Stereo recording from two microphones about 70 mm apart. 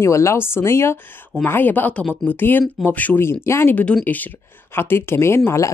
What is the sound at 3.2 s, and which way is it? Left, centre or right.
Speech, left.